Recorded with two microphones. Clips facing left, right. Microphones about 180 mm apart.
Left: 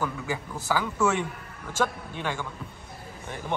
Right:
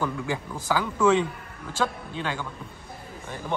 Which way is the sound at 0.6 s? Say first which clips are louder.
Right 1 dB; 10° right (ahead or behind).